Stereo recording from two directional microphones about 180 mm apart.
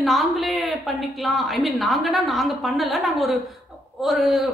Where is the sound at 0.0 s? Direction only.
Centre (ahead or behind).